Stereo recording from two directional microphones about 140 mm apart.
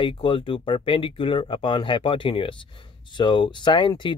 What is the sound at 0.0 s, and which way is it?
Speech, 40° left (ahead or behind).